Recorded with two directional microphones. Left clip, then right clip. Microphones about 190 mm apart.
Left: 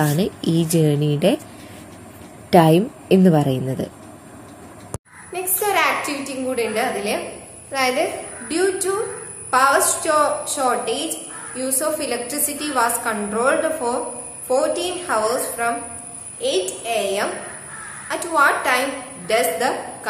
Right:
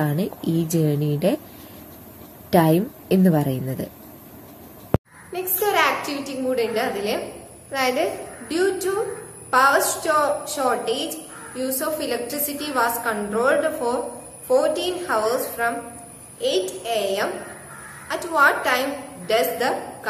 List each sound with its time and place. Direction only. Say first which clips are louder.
0.0 s speech: left 4 dB; 5° left (ahead or behind)
2.5 s speech: left 4 dB; 5° left (ahead or behind)
4.9 s a sound: right 12 dB; 60° left (ahead or behind)
5.3 s a woman's voice: left 1 dB; 10° left (ahead or behind)